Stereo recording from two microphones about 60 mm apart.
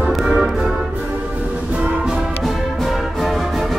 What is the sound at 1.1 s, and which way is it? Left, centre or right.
Music, right.